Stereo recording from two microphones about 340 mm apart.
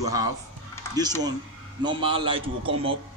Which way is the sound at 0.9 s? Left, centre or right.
Centre.